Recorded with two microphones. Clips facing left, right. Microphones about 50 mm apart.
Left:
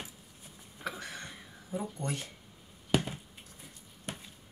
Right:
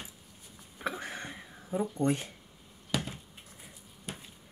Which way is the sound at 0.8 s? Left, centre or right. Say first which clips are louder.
Right 3 dB; right.